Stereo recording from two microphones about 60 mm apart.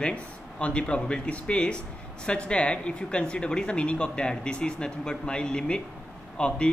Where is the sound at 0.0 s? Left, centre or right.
Centre.